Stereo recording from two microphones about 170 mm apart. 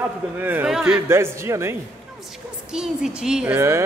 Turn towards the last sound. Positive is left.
turn(degrees=-15)  # may be behind; listen again after turning